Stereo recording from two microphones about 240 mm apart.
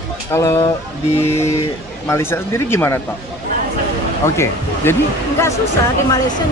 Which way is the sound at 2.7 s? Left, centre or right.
Centre.